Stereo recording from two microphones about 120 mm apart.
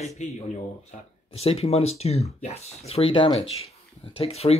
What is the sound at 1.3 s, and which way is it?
Speech, 55° left (ahead or behind).